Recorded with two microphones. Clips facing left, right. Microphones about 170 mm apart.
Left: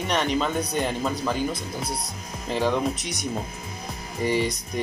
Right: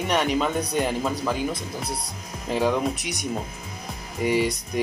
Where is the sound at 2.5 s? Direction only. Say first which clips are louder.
Right 1 dB; 5° right (ahead or behind).